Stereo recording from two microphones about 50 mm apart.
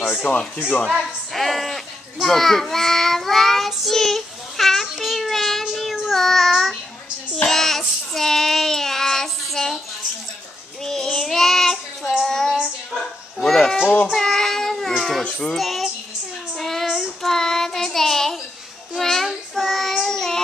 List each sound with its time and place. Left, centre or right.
0.2 s speech: centre
0.8 s speech: centre
2.2 s child singing: centre
10.8 s child singing: centre
13.4 s a sound: centre
14.1 s cat: centre
15.4 s child singing: centre